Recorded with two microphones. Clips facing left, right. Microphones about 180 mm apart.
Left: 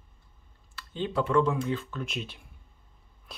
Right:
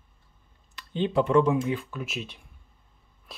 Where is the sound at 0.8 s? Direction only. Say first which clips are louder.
Right 5 dB; 20° right (ahead or behind).